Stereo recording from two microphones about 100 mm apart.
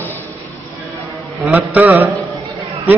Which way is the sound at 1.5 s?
15° right (ahead or behind).